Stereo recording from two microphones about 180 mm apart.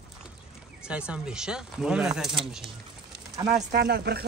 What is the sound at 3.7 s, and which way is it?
Speech, 60° right (ahead or behind).